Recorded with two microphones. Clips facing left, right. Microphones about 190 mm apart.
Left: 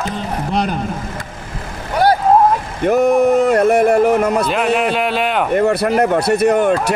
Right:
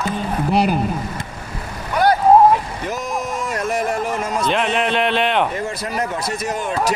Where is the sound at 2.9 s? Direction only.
60° left (ahead or behind).